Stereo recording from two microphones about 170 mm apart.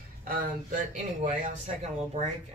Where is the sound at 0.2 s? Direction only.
55° right (ahead or behind).